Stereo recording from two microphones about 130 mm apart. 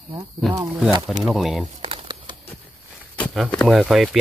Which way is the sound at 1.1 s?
Centre (ahead or behind).